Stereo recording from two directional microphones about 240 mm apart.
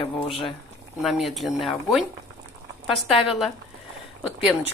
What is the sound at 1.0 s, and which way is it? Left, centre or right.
Speech, centre.